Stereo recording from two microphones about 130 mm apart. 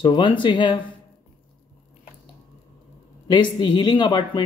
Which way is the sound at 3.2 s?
35° left (ahead or behind).